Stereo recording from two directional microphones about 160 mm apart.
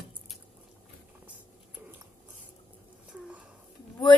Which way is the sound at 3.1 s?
10° right (ahead or behind).